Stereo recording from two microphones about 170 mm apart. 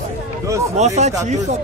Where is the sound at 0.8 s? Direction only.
40° right (ahead or behind).